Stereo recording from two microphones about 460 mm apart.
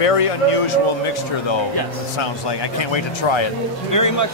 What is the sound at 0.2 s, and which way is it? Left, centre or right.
Speech, left.